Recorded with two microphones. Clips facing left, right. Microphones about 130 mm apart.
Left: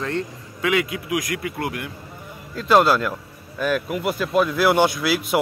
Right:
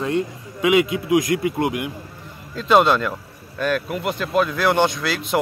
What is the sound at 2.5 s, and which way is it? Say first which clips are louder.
Speech: right 1 dB; centre (ahead or behind).